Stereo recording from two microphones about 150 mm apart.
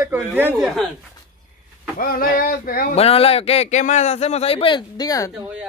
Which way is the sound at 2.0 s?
75° left (ahead or behind).